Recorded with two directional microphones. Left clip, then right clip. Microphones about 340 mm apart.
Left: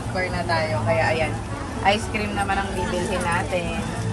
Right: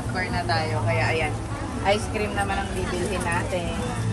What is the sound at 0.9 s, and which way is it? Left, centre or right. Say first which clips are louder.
Speech: left 3 dB; left.